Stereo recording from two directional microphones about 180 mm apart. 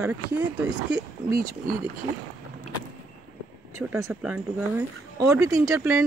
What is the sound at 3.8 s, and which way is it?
Speech, 15° right (ahead or behind).